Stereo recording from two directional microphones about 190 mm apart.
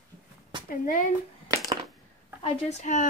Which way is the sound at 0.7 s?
45° left (ahead or behind).